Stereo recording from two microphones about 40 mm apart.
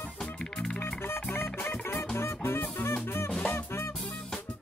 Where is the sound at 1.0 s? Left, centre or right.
Left.